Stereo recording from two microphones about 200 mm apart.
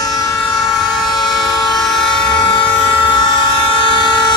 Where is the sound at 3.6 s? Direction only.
25° left (ahead or behind).